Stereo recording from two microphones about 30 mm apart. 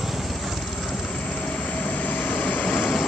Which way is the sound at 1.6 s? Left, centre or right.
Left.